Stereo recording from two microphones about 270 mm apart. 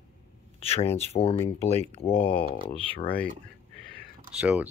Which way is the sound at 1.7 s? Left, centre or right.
Right.